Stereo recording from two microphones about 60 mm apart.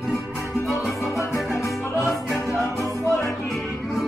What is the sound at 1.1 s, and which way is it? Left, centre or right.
Music, left.